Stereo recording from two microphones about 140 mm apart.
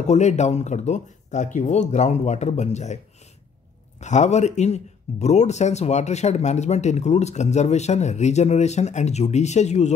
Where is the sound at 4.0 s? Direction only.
55° left (ahead or behind).